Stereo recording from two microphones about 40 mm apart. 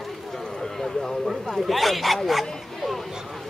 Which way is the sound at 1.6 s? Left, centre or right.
Centre.